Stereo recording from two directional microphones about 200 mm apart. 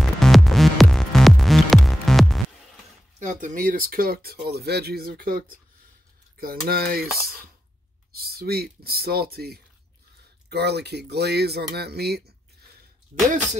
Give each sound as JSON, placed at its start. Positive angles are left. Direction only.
{"t": 0.0, "sound": "music", "side_deg": 0}
{"t": 3.2, "sound": "speech", "side_deg": -40}